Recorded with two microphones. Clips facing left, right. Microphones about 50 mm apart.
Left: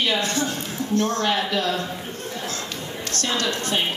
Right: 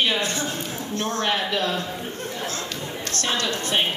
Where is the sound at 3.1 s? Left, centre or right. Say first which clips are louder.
Left 1 dB; right.